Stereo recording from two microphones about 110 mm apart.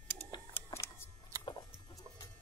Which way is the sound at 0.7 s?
25° left (ahead or behind).